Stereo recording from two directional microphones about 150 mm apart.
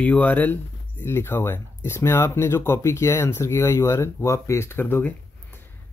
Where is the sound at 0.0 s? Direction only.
10° left (ahead or behind).